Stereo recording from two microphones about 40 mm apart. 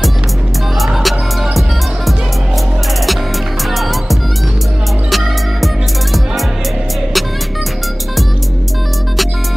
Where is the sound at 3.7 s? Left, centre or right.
Centre.